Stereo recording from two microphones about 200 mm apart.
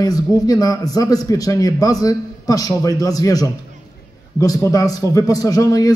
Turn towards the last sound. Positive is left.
turn(degrees=15)  # may be behind; listen again after turning